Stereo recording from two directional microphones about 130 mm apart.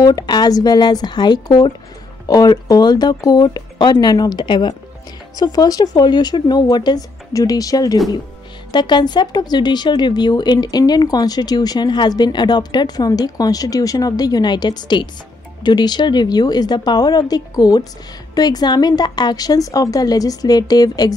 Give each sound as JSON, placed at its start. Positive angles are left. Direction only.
{"t": 0.0, "sound": "a woman's voice", "side_deg": 30}